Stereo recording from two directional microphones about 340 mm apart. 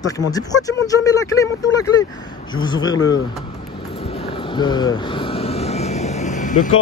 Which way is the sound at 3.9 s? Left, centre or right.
Centre.